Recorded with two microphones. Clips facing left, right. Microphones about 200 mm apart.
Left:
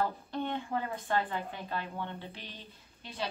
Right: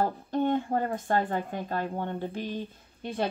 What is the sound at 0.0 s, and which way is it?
A woman's voice, 45° right (ahead or behind).